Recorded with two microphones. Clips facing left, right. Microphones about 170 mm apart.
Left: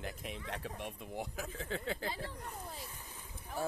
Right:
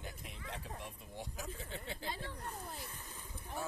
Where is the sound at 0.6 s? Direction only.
90° left.